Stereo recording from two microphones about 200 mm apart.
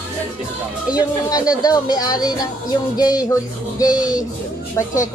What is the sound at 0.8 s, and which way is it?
Speech, 20° left (ahead or behind).